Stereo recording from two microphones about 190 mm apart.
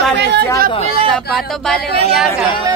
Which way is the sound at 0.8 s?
30° right (ahead or behind).